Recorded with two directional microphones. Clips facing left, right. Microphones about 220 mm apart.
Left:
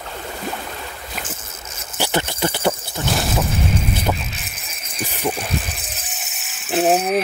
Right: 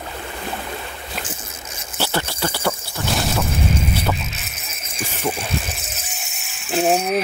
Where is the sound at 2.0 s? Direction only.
20° left (ahead or behind).